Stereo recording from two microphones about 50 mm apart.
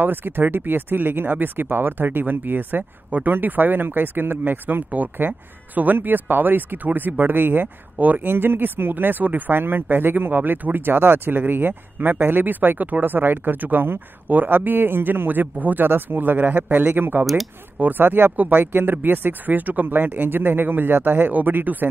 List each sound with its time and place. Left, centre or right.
0.0 s speech: right
8.3 s speech: right